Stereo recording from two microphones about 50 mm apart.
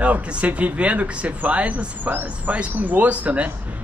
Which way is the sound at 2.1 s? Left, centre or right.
Right.